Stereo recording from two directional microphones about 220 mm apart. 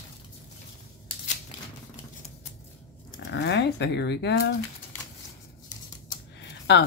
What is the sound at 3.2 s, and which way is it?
Speech, 50° left (ahead or behind).